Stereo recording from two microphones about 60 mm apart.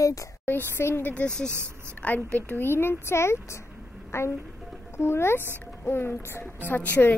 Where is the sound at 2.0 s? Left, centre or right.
Left.